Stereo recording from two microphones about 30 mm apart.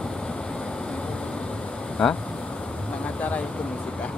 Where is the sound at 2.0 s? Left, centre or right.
Left.